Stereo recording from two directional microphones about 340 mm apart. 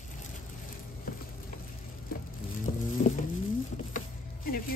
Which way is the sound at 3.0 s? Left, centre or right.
Left.